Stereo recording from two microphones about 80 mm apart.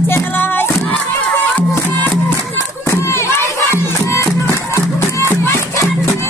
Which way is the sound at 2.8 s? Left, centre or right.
Left.